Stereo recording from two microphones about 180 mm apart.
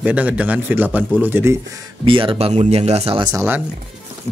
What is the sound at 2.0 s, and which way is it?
Speech, 30° right (ahead or behind).